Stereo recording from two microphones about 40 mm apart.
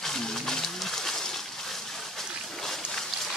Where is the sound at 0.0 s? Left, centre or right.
Centre.